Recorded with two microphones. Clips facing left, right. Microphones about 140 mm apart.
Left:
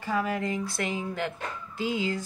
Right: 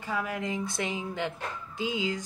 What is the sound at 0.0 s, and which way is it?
Speech, 15° right (ahead or behind).